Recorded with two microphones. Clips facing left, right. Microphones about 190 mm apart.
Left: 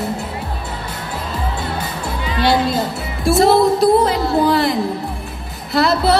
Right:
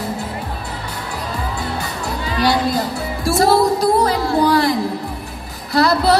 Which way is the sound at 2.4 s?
25° left (ahead or behind).